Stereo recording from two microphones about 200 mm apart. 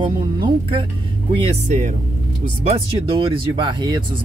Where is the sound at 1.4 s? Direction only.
35° right (ahead or behind).